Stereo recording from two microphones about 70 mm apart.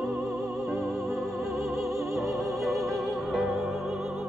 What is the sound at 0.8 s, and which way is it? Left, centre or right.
Opera, centre.